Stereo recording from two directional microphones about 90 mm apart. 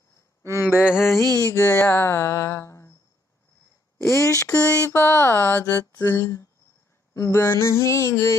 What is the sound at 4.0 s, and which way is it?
Speech, 35° left (ahead or behind).